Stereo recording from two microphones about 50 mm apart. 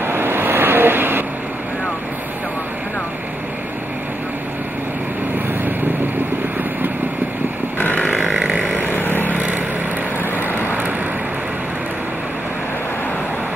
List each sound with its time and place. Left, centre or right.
0.0 s vehicle: right
8.3 s a sound: centre
9.3 s vehicle: right